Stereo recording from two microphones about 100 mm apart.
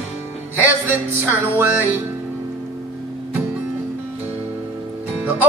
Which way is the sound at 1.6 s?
20° right (ahead or behind).